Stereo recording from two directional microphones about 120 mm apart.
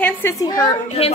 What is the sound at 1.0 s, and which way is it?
Speech, 55° left (ahead or behind).